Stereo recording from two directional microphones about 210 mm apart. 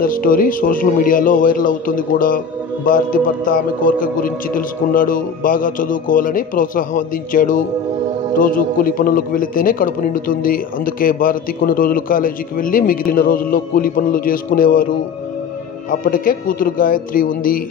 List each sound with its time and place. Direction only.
0.0 s a man's voice: 40° left (ahead or behind)